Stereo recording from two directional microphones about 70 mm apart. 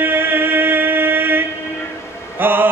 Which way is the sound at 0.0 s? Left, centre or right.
Right.